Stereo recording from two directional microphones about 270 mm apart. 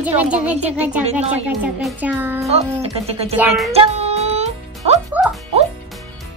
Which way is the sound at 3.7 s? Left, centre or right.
Right.